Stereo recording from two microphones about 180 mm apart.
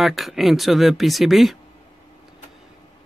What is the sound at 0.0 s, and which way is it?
Speech, centre (ahead or behind).